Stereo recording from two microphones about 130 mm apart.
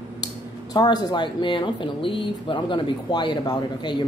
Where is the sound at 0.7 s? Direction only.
35° left (ahead or behind).